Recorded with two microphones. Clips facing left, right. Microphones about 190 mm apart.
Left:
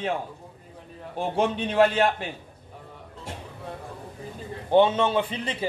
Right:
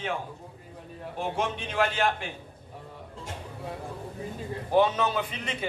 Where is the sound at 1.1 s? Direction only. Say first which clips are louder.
Left 5 dB; 35° left (ahead or behind).